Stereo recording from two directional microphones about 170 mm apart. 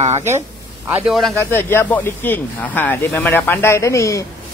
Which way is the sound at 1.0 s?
Centre (ahead or behind).